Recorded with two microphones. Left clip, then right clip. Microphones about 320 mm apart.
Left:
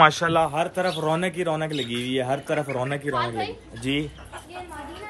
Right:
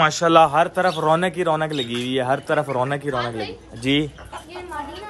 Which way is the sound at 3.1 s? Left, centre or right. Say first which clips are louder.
Right 1 dB; centre.